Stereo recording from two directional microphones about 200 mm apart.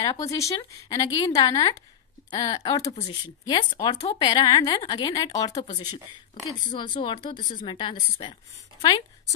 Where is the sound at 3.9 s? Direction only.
35° left (ahead or behind); by 5.6 s 20° left (ahead or behind).